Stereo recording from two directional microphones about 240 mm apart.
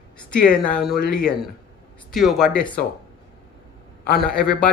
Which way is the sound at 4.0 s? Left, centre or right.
Left.